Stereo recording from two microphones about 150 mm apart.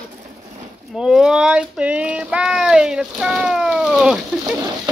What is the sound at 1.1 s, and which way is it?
Speech, 5° right (ahead or behind).